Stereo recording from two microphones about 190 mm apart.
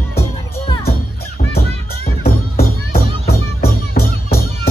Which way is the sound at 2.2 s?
55° left (ahead or behind).